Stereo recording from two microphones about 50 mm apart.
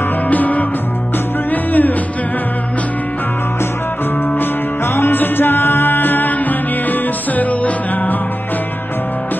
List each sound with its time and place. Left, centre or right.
0.3 s music: left
4.9 s music: left